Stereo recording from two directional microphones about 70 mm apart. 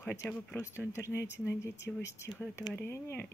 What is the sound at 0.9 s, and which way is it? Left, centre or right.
Speech, left.